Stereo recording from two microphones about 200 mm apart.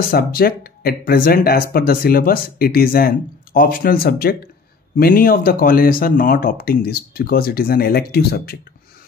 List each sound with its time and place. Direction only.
0.1 s speech: 50° left (ahead or behind)